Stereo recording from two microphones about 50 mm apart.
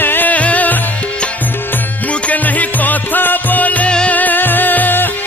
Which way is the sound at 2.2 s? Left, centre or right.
Left.